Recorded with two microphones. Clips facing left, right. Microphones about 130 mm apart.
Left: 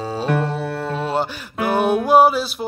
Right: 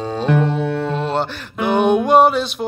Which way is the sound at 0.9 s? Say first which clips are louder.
Right 1 dB; 5° left (ahead or behind).